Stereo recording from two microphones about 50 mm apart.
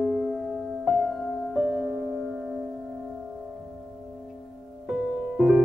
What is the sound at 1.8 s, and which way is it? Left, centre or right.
Music, centre.